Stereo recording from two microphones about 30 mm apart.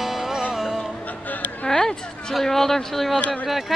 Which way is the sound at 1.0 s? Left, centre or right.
Left.